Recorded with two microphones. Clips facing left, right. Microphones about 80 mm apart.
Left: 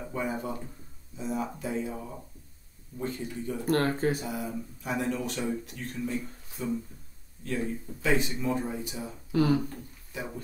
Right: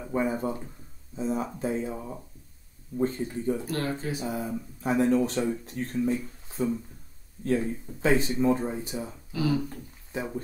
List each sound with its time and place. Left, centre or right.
0.1 s speech: right
3.0 s speech: right
3.6 s speech: left
4.3 s speech: right
6.5 s a sound: right
7.4 s speech: right
9.3 s speech: left
10.1 s speech: right